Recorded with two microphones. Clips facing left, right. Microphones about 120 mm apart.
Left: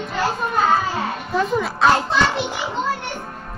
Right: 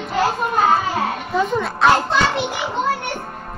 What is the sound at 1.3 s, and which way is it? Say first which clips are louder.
A child's voice: even; centre (ahead or behind).